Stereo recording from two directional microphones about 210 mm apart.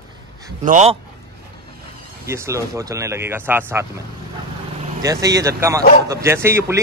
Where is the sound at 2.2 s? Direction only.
15° right (ahead or behind).